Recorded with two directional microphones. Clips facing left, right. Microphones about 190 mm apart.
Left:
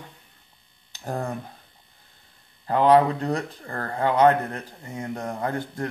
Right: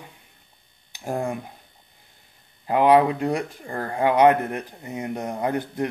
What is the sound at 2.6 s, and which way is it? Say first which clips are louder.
Speech: right 1 dB; 10° right (ahead or behind).